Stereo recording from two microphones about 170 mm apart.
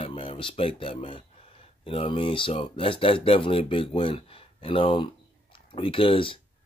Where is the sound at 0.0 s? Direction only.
30° left (ahead or behind).